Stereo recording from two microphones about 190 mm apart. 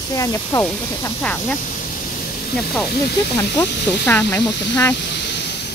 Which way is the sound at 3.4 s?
15° left (ahead or behind).